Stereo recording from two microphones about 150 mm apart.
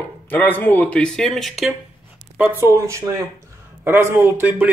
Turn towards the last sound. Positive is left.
turn(degrees=-10)  # may be behind; listen again after turning